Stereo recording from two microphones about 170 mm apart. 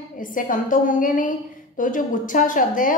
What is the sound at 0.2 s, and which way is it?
A woman's voice, 50° left (ahead or behind).